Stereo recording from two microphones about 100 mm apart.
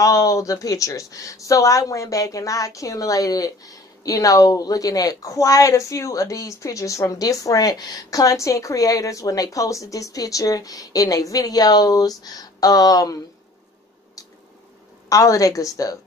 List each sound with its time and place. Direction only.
0.0 s speech: 35° left (ahead or behind)
15.0 s speech: 35° left (ahead or behind)